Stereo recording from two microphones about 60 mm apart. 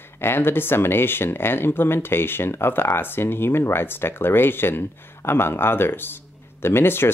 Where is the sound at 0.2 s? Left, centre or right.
Left.